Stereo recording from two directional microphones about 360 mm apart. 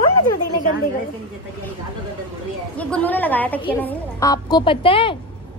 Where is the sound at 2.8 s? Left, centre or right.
Centre.